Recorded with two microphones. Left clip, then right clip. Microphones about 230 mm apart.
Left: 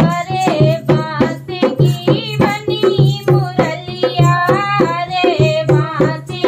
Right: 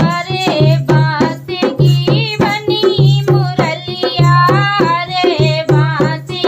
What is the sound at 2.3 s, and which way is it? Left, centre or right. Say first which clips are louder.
Music: right 2 dB; right.